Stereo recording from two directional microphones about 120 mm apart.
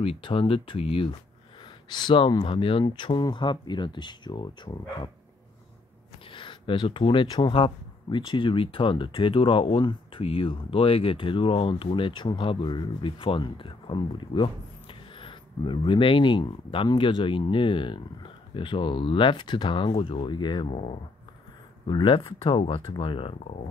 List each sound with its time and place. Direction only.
0.0 s speech: 50° left (ahead or behind)
1.9 s speech: 40° left (ahead or behind)
6.3 s speech: 45° left (ahead or behind)
20.7 s speech: 65° left (ahead or behind)
21.8 s speech: 45° left (ahead or behind)